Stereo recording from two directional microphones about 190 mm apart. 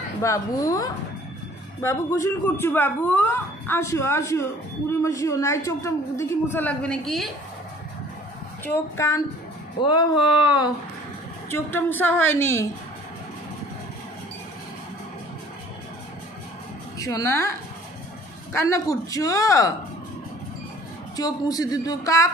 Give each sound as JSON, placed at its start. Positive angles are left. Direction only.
{"t": 0.2, "sound": "speech", "side_deg": 15}
{"t": 8.6, "sound": "speech", "side_deg": 15}
{"t": 9.8, "sound": "a man's voice", "side_deg": 25}
{"t": 11.5, "sound": "speech", "side_deg": 10}
{"t": 17.0, "sound": "speech", "side_deg": 15}
{"t": 21.2, "sound": "a man's voice", "side_deg": 20}